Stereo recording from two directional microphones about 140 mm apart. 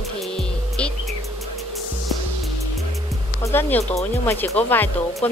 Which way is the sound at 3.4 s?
15° left (ahead or behind).